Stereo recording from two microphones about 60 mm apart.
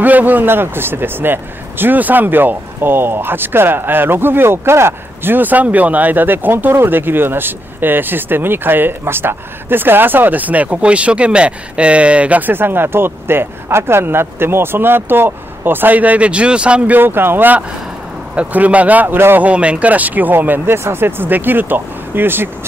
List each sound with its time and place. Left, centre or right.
0.0 s speech: right
16.9 s speech: right
19.1 s speech: right
19.4 s speech: centre; by 22.5 s right